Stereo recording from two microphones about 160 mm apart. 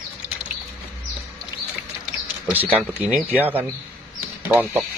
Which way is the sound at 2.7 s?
10° right (ahead or behind).